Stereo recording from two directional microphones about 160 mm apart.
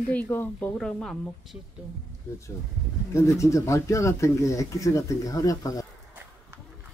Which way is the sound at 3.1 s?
20° left (ahead or behind).